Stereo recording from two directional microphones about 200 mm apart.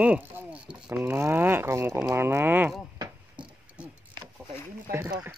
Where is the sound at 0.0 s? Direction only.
10° right (ahead or behind).